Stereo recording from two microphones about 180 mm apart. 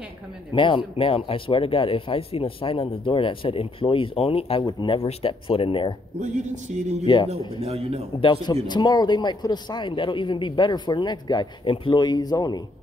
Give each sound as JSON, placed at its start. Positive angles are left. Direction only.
{"t": 0.5, "sound": "speech", "side_deg": 25}
{"t": 6.1, "sound": "speech", "side_deg": -40}
{"t": 8.2, "sound": "speech", "side_deg": 25}